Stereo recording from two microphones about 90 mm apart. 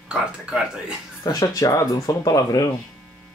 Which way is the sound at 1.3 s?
40° left (ahead or behind).